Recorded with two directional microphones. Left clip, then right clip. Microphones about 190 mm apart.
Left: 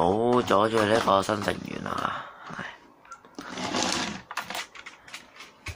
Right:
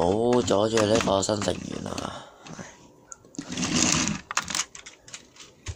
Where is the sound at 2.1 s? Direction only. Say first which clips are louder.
Left 5 dB; 20° right (ahead or behind).